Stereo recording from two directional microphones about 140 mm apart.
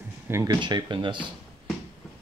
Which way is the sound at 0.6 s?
35° right (ahead or behind).